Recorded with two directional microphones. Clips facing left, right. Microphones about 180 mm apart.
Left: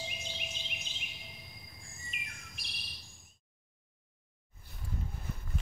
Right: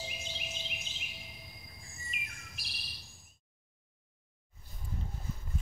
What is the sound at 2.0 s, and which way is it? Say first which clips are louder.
Bird: right 1 dB; centre (ahead or behind).